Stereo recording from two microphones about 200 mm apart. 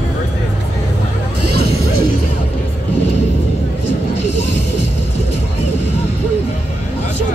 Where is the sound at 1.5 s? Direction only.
50° right (ahead or behind).